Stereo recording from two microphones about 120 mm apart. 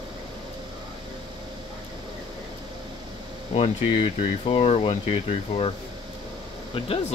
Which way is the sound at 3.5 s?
55° left (ahead or behind).